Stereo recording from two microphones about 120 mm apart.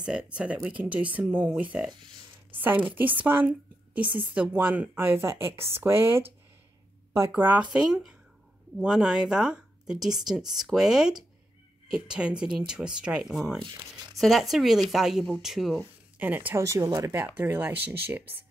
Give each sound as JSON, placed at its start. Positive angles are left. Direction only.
{"t": 0.0, "sound": "a woman's voice", "side_deg": -5}
{"t": 7.7, "sound": "speech", "side_deg": -5}
{"t": 13.6, "sound": "speech", "side_deg": -40}
{"t": 14.1, "sound": "speech", "side_deg": 0}
{"t": 15.8, "sound": "speech", "side_deg": -15}